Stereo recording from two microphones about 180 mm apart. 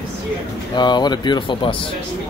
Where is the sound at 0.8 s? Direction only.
25° left (ahead or behind).